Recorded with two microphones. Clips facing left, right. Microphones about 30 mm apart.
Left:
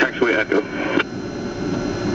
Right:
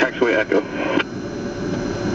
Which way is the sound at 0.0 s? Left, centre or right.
Centre.